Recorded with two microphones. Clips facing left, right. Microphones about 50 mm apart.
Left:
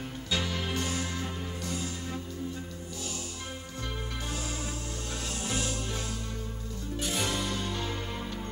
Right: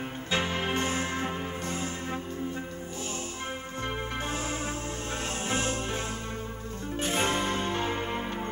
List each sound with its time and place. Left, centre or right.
0.3 s music: right
5.5 s music: right
7.0 s music: right